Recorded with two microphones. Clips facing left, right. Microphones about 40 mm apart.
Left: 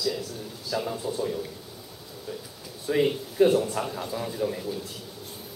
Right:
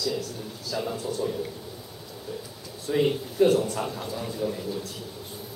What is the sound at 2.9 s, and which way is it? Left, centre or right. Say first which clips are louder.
A man's voice: even; centre.